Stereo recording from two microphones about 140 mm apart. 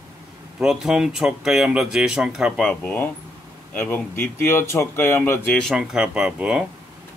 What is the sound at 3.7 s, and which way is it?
Speech, 15° left (ahead or behind).